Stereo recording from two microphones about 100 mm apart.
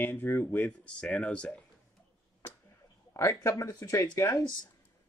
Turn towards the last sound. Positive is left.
turn(degrees=30)  # may be behind; listen again after turning